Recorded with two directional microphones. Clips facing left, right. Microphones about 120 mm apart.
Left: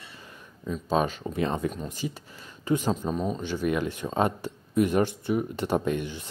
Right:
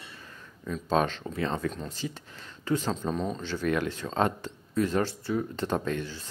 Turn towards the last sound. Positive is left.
turn(degrees=15)  # may be behind; listen again after turning